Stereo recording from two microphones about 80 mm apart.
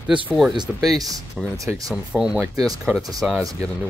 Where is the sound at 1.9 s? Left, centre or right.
Centre.